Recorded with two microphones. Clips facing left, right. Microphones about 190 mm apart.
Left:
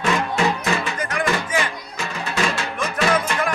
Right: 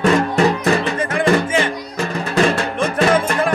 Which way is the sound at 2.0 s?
40° right (ahead or behind).